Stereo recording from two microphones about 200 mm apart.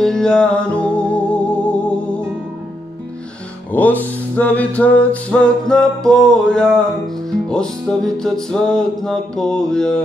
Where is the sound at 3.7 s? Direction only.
10° left (ahead or behind).